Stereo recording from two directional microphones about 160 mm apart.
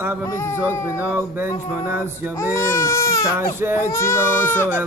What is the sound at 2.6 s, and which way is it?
Speech, 20° left (ahead or behind).